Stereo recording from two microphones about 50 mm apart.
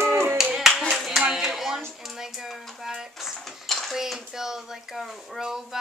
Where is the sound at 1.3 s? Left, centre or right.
Centre.